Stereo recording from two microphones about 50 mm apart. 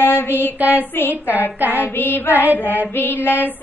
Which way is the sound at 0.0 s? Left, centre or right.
Left.